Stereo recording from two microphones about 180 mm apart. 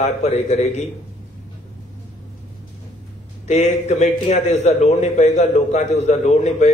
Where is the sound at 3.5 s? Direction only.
35° left (ahead or behind).